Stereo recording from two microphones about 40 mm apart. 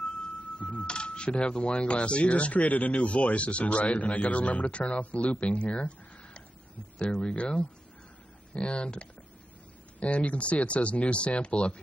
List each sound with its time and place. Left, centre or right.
0.6 s speech: left
7.3 s speech: left
10.1 s speech: left